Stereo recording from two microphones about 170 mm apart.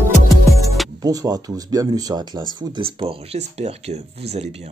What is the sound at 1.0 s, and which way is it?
Speech, 20° right (ahead or behind).